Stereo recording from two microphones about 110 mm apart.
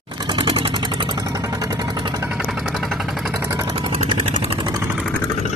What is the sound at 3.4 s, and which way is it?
Vehicle, 30° right (ahead or behind).